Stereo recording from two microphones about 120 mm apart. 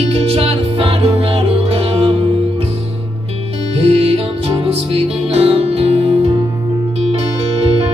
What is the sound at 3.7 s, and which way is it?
Music, 60° right (ahead or behind).